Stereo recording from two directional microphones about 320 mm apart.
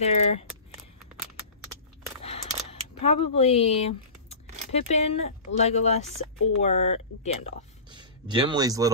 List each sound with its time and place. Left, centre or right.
0.0 s speech: centre
2.2 s camera: centre
4.7 s speech: centre
7.9 s speech: centre